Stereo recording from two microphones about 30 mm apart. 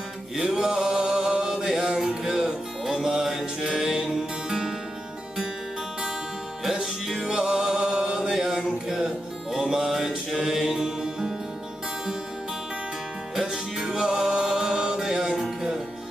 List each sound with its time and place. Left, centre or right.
0.4 s music: centre
0.9 s mantra: right
2.0 s music: centre
7.2 s music: right
8.3 s mantra: centre
8.8 s music: centre
10.3 s mantra: centre
10.7 s music: centre
13.4 s music: centre